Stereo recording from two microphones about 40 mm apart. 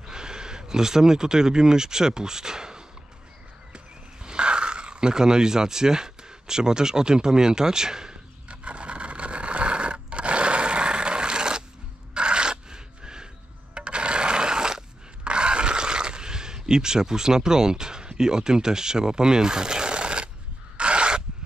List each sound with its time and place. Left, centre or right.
0.0 s speech: centre
8.5 s scrape: right
13.7 s a sound: right